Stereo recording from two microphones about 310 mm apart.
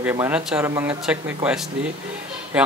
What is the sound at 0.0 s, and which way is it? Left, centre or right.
Speech, centre.